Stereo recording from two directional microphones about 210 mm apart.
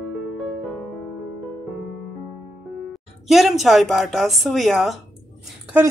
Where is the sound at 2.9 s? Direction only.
Centre (ahead or behind).